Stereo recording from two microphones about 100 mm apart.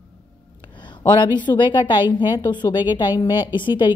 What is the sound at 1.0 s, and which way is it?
A woman's voice, 50° left (ahead or behind).